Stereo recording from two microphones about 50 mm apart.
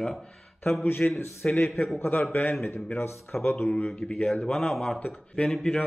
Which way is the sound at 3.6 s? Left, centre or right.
Left.